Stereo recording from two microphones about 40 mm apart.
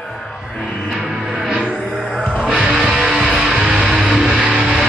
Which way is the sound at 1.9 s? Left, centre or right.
Centre.